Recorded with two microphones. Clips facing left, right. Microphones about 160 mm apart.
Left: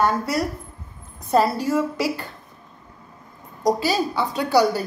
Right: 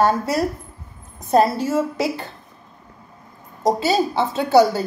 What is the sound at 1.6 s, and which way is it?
Speech, 25° right (ahead or behind).